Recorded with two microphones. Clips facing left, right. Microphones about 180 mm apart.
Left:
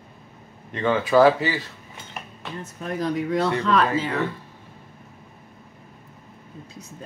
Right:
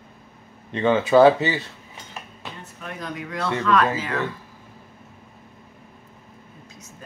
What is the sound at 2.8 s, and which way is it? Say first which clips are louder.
Speech: left 8 dB; 35° left (ahead or behind).